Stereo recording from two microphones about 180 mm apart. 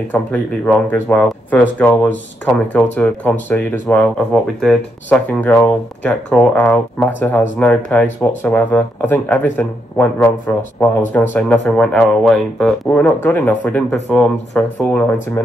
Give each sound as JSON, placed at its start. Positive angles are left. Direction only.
{"t": 0.1, "sound": "speech", "side_deg": 10}